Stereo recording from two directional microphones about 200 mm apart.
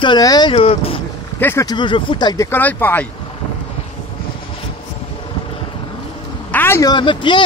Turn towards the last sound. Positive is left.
turn(degrees=25)  # may be behind; listen again after turning